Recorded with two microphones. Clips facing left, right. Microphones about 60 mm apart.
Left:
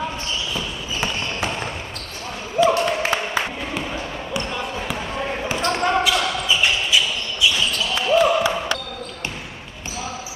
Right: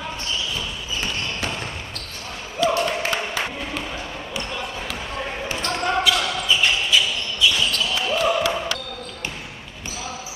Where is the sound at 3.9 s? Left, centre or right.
Centre.